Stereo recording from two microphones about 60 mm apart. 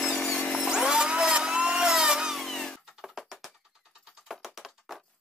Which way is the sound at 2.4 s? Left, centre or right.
Centre.